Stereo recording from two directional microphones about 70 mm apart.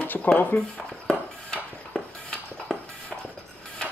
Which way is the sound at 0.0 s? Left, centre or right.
Left.